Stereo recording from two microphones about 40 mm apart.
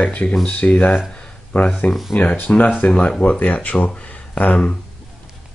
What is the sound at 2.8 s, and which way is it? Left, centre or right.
Speech, left.